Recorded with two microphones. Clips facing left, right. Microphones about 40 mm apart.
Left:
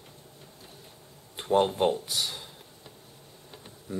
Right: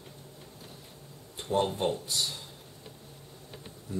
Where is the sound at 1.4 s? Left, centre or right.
Left.